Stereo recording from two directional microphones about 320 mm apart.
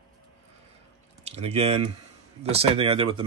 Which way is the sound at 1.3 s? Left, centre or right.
Centre.